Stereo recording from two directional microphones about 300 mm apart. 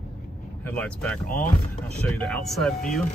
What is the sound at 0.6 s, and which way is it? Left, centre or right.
Speech, centre.